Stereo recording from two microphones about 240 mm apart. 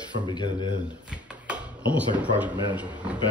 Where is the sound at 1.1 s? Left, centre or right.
Centre.